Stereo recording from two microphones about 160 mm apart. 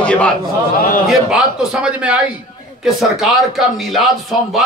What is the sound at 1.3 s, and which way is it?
A man's voice, 5° right (ahead or behind).